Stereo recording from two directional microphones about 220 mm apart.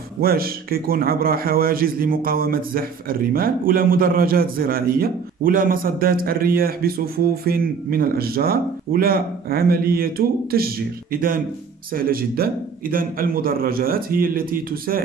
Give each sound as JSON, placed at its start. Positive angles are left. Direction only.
{"t": 0.2, "sound": "a man's voice", "side_deg": -45}